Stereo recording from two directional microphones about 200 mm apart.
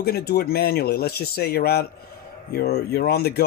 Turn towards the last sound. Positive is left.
turn(degrees=50)  # may be behind; listen again after turning